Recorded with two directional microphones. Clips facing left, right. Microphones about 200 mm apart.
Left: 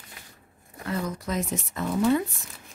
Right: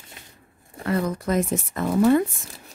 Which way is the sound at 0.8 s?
55° right (ahead or behind).